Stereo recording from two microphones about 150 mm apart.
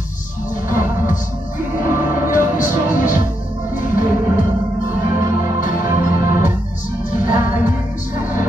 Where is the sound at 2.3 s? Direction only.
60° left (ahead or behind).